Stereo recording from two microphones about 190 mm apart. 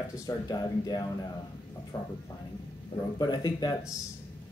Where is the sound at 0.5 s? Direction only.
20° left (ahead or behind).